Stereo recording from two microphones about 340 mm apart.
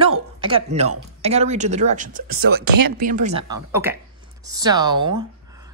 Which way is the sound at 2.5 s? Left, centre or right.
Right.